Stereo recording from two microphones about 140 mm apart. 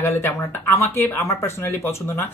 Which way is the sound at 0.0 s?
15° left (ahead or behind).